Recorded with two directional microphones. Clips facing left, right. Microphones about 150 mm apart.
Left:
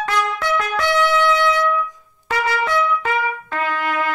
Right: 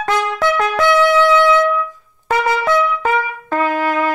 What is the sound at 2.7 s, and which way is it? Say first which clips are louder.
Trumpet: right 4 dB; 40° right (ahead or behind).